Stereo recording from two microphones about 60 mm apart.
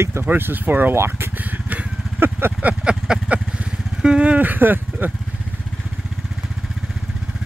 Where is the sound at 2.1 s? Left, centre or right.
Right.